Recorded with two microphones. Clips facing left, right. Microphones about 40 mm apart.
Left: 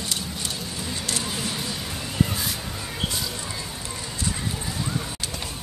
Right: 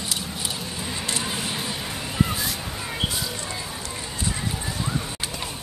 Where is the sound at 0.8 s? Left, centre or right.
Right.